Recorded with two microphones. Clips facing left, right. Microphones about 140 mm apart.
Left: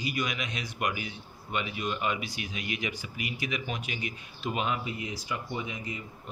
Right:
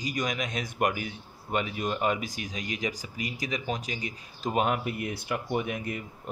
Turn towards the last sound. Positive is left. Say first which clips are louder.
# right 6 dB
turn(degrees=-60)  # may be behind; listen again after turning